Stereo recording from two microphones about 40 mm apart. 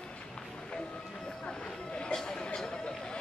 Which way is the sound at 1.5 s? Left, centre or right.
Left.